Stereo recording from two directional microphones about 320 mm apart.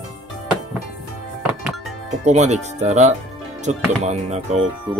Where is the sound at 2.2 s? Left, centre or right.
Right.